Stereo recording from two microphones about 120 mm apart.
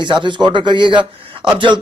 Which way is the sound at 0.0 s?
40° right (ahead or behind).